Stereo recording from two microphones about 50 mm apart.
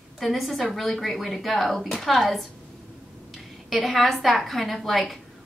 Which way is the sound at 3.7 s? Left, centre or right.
Centre.